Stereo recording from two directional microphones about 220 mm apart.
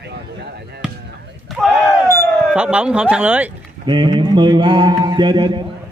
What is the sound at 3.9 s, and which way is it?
Speech, 20° right (ahead or behind).